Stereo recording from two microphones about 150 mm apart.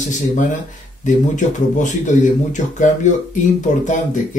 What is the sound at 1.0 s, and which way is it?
Speech, 55° left (ahead or behind).